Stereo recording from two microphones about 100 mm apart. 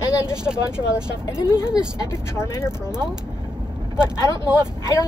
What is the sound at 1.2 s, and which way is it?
Speech, 30° left (ahead or behind).